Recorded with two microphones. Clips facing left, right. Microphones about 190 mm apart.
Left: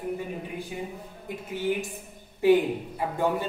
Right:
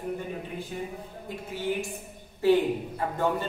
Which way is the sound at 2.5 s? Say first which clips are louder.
Left 1 dB; 10° left (ahead or behind).